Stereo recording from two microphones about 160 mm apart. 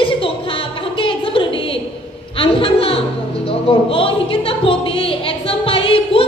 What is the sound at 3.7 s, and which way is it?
Music, 35° left (ahead or behind).